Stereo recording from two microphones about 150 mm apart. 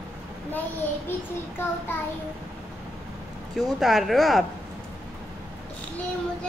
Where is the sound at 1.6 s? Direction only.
15° left (ahead or behind).